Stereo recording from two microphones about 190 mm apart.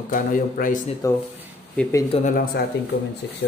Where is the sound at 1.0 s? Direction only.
15° left (ahead or behind).